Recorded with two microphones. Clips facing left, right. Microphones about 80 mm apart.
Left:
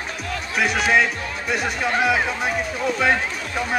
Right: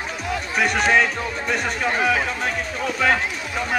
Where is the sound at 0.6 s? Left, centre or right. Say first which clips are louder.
Even; centre.